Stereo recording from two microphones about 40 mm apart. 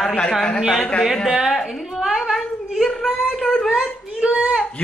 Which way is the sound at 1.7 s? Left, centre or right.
Centre.